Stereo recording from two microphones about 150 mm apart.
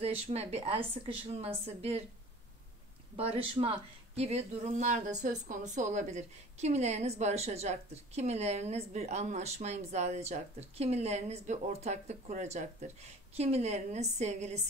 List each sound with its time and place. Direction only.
0.0 s speech: 45° right (ahead or behind)
3.2 s speech: 40° right (ahead or behind)